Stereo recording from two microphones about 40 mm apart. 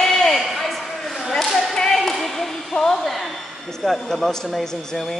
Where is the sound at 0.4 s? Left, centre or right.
Centre.